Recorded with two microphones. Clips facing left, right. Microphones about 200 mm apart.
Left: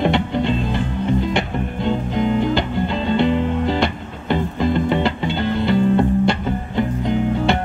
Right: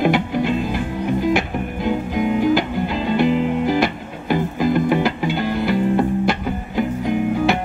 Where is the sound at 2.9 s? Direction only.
25° left (ahead or behind).